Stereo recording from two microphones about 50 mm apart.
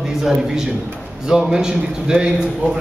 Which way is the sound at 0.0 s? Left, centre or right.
Centre.